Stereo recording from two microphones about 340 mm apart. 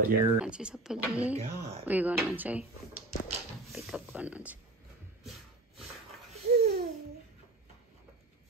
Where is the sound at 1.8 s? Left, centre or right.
Centre.